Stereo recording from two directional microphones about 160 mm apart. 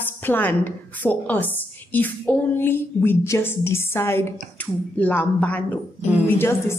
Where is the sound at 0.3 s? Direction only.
10° left (ahead or behind).